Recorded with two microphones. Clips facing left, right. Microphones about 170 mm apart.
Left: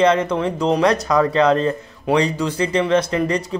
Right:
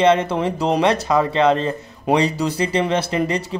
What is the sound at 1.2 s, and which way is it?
Speech, 25° right (ahead or behind).